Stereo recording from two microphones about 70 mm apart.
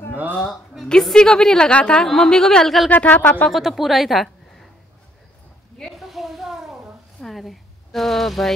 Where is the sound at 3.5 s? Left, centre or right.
Centre.